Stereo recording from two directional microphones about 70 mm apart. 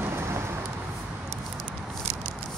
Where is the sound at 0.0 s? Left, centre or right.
Right.